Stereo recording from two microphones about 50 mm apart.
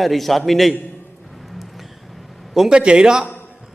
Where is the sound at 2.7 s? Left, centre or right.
Centre.